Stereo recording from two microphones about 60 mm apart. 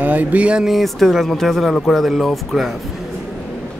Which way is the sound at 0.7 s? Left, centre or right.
Centre.